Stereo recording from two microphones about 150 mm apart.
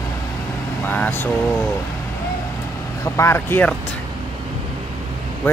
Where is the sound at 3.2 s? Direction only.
15° left (ahead or behind).